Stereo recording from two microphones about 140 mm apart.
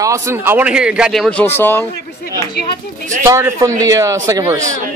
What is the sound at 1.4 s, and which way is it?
Speech, 15° left (ahead or behind).